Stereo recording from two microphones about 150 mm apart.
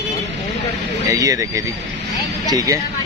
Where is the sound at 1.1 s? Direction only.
20° right (ahead or behind).